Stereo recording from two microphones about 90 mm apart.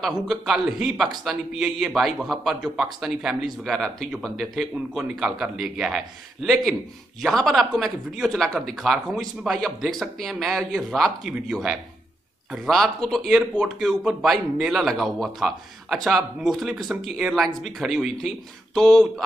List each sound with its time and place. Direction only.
0.0 s a man's voice: centre (ahead or behind)
4.9 s a man's voice: 5° right (ahead or behind)